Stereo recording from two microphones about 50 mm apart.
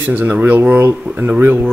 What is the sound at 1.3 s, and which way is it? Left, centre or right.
Speech, right.